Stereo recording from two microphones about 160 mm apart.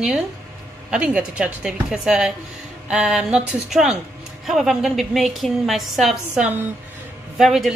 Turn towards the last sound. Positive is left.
turn(degrees=0)  # may be behind; listen again after turning